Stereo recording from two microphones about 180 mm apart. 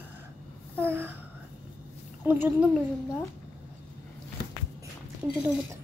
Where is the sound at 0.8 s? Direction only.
10° right (ahead or behind).